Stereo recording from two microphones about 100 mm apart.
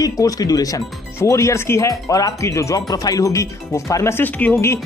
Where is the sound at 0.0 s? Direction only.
35° left (ahead or behind); by 4.6 s 15° left (ahead or behind).